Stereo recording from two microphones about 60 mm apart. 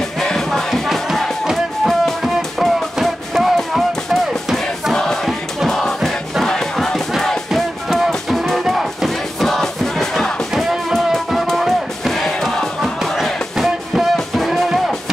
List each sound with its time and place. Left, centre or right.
0.2 s music: centre
4.9 s choir: centre
5.7 s music: centre